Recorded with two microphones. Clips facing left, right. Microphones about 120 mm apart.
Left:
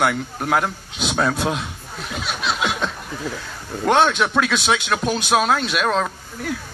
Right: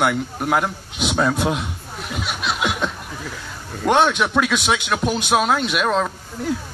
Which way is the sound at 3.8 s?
15° right (ahead or behind).